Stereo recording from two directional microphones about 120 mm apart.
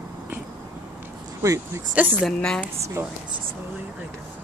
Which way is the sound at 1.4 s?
25° right (ahead or behind).